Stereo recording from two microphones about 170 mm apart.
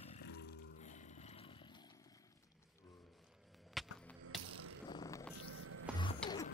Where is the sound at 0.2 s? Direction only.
80° left.